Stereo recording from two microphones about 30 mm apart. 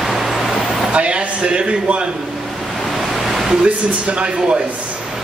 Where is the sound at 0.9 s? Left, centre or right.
Right.